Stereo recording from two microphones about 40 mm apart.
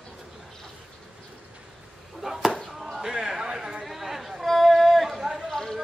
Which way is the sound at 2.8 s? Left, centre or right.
Centre.